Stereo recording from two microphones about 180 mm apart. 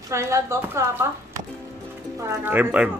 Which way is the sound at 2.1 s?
15° right (ahead or behind).